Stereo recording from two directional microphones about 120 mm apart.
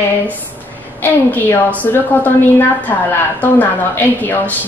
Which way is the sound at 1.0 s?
15° left (ahead or behind).